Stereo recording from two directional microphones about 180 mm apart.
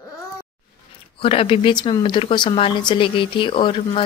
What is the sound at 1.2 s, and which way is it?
Speech, 30° left (ahead or behind).